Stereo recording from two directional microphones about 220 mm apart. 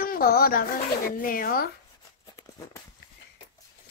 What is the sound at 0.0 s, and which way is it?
Speech, 40° left (ahead or behind).